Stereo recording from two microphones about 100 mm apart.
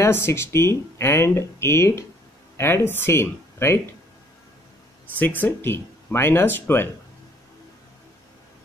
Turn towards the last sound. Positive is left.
turn(degrees=20)  # may be behind; listen again after turning